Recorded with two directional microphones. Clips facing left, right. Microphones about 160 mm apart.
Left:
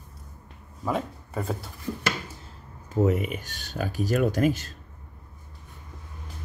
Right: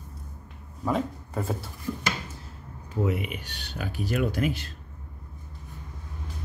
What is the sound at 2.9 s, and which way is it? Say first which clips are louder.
Speech: left 4 dB; 45° left (ahead or behind).